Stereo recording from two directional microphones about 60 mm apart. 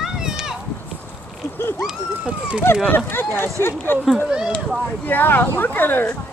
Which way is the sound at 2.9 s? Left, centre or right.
Left.